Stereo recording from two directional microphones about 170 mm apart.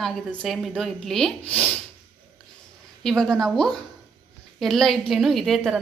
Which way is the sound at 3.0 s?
5° left (ahead or behind).